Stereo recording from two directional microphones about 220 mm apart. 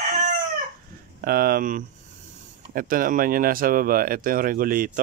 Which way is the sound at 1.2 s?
40° right (ahead or behind).